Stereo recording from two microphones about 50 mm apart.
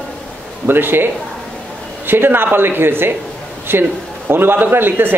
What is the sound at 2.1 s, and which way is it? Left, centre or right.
Speech, right.